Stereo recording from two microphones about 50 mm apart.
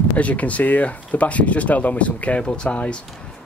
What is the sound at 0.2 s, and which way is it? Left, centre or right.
Speech, left.